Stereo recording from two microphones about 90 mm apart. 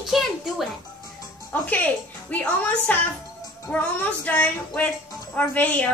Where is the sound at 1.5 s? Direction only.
15° left (ahead or behind).